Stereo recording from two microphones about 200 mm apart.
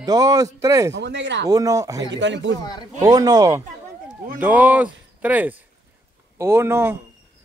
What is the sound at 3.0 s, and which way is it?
Speech, 20° right (ahead or behind).